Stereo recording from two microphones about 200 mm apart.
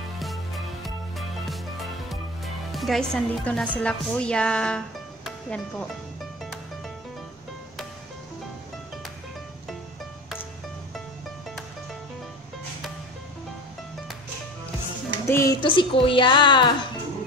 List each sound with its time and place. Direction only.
0.8 s music: centre (ahead or behind)
15.2 s speech: 15° left (ahead or behind)
15.6 s a woman's voice: 25° left (ahead or behind)